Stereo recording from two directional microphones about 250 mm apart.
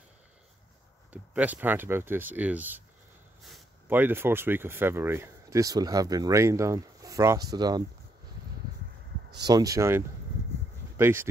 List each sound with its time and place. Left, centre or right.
1.1 s speech: centre
9.4 s speech: centre